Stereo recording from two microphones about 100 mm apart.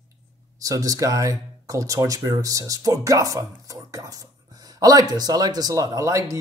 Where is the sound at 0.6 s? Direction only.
35° right (ahead or behind).